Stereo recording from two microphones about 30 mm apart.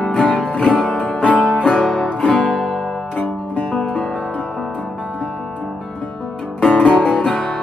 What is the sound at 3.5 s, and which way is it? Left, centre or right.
Music, left.